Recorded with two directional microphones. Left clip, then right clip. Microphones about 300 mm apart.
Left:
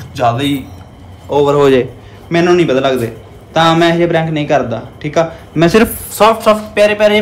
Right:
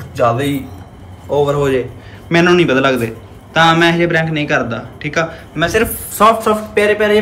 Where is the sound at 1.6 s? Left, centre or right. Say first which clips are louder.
Left 6 dB; left.